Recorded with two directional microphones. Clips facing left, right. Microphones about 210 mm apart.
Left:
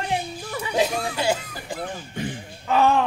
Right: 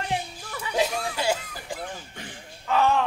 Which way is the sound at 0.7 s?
5° right (ahead or behind).